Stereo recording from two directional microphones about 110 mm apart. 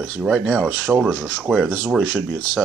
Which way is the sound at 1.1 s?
10° left (ahead or behind).